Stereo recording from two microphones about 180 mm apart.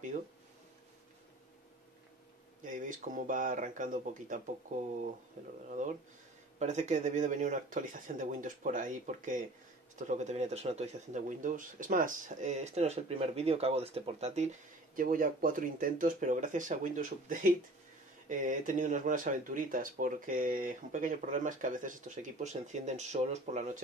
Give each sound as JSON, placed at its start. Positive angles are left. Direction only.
{"t": 2.6, "sound": "speech", "side_deg": -45}